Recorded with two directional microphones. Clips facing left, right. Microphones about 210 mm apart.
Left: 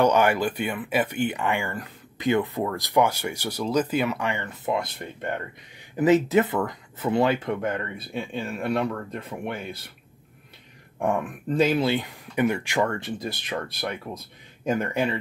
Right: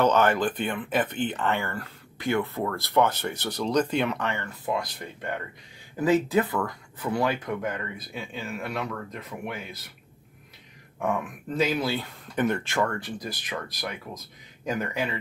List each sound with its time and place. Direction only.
0.0 s speech: 10° left (ahead or behind); by 9.3 s 30° left (ahead or behind)
11.0 s speech: 30° left (ahead or behind)